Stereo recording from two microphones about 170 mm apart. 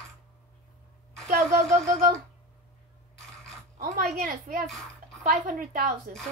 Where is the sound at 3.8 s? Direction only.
60° right (ahead or behind).